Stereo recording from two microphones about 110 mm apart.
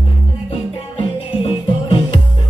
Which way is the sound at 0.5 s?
60° left (ahead or behind).